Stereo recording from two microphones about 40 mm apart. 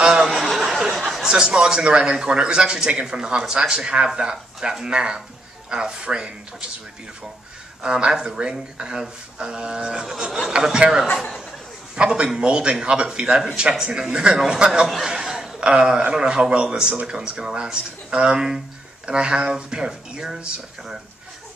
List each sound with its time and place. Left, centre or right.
0.0 s a sound: centre
1.2 s speech: centre
7.8 s speech: right
11.9 s a man's voice: right
15.0 s chuckle: centre
15.6 s speech: right